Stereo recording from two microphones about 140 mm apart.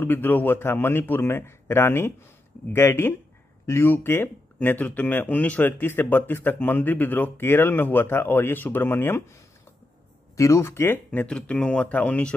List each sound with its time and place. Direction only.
0.0 s speech: 15° left (ahead or behind)
10.3 s speech: 20° left (ahead or behind)